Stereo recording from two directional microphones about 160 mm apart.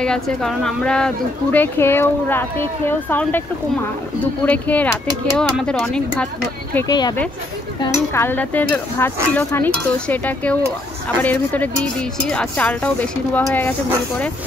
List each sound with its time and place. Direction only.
0.0 s a woman's voice: 5° left (ahead or behind)
4.5 s a woman's voice: 10° left (ahead or behind)
6.9 s a woman's voice: 25° left (ahead or behind)